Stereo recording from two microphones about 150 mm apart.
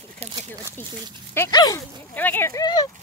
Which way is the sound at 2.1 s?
10° left (ahead or behind).